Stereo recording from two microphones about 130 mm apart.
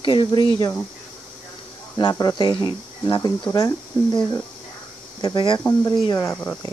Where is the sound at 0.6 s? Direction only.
20° left (ahead or behind).